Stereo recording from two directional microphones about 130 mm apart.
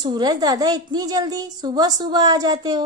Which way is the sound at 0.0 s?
35° right (ahead or behind).